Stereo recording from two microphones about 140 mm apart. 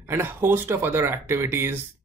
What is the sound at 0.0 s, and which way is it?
Speech, 15° right (ahead or behind).